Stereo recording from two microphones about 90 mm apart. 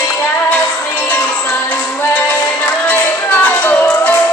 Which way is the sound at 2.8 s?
20° left (ahead or behind).